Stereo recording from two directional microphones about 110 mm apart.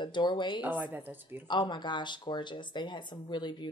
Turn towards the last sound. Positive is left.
turn(degrees=45)  # may be behind; listen again after turning